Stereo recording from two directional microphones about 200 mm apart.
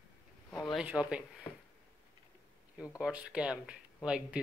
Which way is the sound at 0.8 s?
5° right (ahead or behind).